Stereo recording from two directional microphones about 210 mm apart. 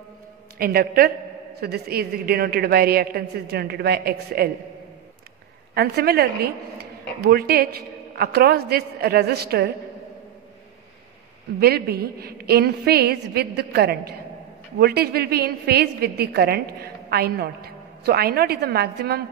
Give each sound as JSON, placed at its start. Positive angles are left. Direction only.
{"t": 0.6, "sound": "a woman's voice", "side_deg": -45}
{"t": 5.8, "sound": "a woman's voice", "side_deg": -50}
{"t": 11.6, "sound": "a woman's voice", "side_deg": -45}